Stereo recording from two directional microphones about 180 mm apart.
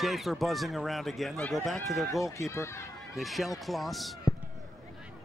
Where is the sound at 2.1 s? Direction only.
15° left (ahead or behind).